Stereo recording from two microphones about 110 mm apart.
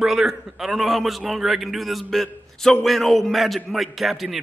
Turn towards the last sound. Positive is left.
turn(degrees=0)  # may be behind; listen again after turning